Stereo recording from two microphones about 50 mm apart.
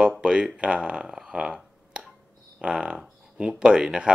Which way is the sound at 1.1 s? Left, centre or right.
Centre.